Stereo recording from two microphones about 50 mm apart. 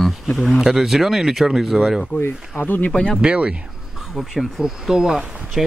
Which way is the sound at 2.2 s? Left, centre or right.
Left.